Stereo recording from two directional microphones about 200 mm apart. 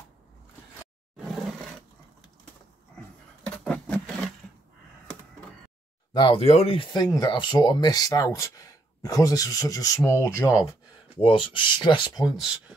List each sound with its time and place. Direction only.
1.1 s roar: centre (ahead or behind)
3.4 s a sound: 5° left (ahead or behind)
6.1 s speech: 25° left (ahead or behind)
11.1 s speech: 25° left (ahead or behind)
12.3 s speech: 5° right (ahead or behind)